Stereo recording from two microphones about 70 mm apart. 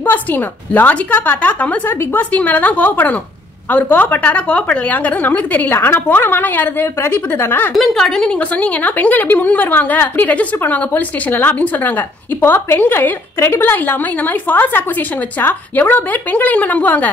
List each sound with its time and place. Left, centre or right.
0.0 s a woman's voice: left
7.7 s a woman's voice: centre
8.4 s a woman's voice: left